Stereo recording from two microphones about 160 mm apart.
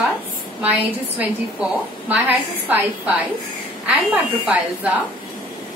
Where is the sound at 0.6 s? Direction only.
5° right (ahead or behind).